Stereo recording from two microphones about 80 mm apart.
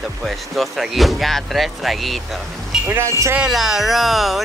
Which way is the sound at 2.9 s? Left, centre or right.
Right.